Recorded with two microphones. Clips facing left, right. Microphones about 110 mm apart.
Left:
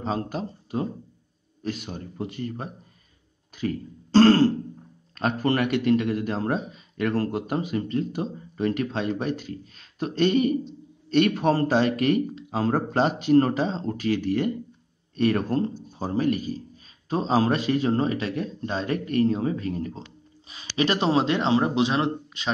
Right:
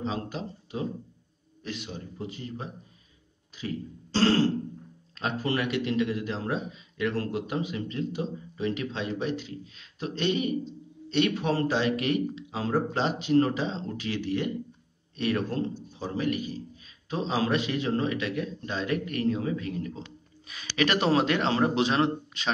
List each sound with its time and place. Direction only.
0.0 s a man's voice: 45° left (ahead or behind)
3.5 s throat clearing: 50° left (ahead or behind)
5.1 s a man's voice: 50° left (ahead or behind)
20.4 s a man's voice: 30° left (ahead or behind)